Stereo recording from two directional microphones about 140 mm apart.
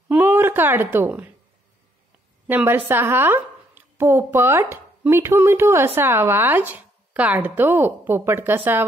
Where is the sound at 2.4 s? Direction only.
15° right (ahead or behind).